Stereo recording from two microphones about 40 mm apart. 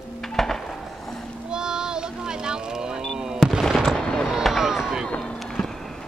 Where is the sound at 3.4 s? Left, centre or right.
Centre.